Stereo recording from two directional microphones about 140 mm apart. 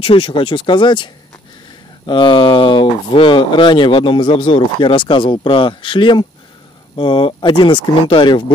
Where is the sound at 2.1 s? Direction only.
35° left (ahead or behind).